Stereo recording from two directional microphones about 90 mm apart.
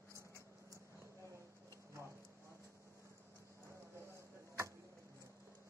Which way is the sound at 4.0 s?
30° right (ahead or behind).